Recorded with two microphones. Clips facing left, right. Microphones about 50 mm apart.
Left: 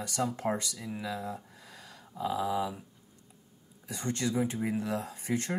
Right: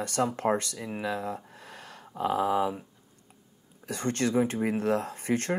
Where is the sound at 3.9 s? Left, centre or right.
Right.